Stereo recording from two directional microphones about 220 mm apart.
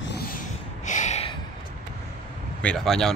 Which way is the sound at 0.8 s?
35° left (ahead or behind).